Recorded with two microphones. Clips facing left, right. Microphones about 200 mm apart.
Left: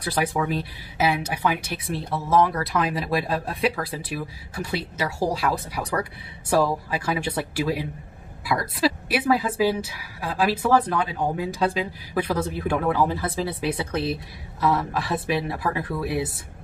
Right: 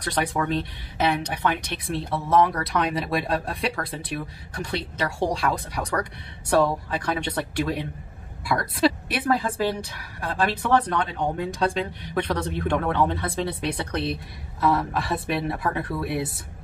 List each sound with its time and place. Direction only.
0.0 s a woman's voice: 5° left (ahead or behind)